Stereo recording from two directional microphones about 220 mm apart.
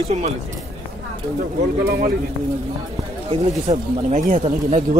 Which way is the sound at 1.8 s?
50° right (ahead or behind).